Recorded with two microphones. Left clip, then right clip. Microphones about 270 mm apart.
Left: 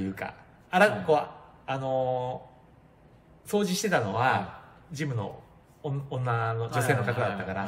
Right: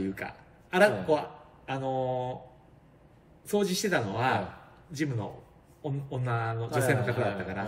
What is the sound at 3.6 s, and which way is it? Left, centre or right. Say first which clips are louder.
Speech: left 3 dB; centre.